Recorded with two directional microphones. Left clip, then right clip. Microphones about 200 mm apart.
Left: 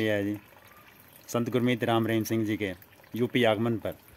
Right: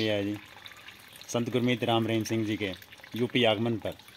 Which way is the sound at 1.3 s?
15° left (ahead or behind).